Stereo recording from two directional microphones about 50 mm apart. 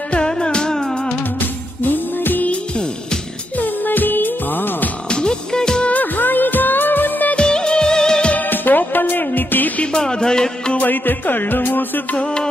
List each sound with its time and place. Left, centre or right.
0.1 s music: centre
1.4 s music: left
2.5 s music: centre
3.5 s music: left
5.1 s music: centre
5.9 s music of bollywood: left
7.3 s music of bollywood: centre
8.3 s music: left
9.9 s music: centre
10.8 s music: left
12.2 s music: centre